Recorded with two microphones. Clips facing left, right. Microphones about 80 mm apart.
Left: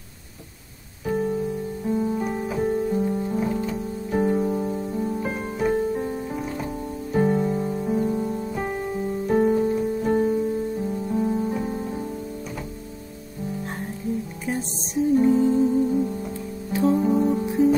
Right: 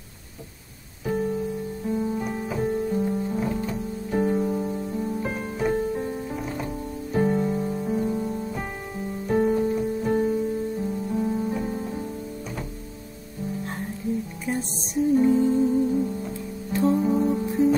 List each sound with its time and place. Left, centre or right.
1.0 s music: centre
14.5 s music: centre